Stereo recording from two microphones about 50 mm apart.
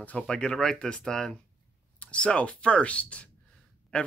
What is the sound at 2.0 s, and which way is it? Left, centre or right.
Speech, left.